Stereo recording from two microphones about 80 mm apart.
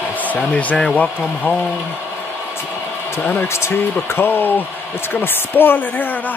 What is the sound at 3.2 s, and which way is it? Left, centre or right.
Speech, left.